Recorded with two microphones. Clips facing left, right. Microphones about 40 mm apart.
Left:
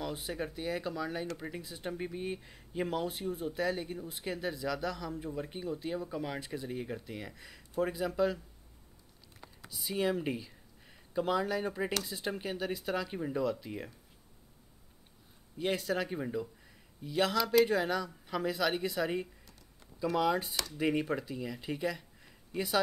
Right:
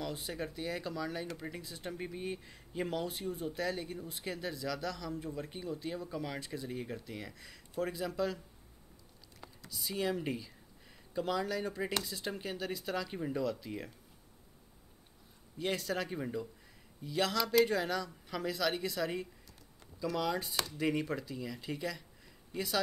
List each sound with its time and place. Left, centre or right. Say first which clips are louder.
0.0 s speech: left 2 dB; centre
9.8 s speech: left 3 dB; centre
15.6 s speech: left 3 dB; centre